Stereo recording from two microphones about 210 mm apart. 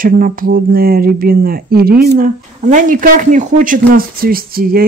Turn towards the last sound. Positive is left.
turn(degrees=-45)  # may be behind; listen again after turning